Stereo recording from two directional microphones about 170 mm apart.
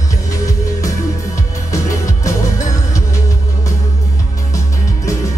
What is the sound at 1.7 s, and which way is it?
Music, 20° left (ahead or behind).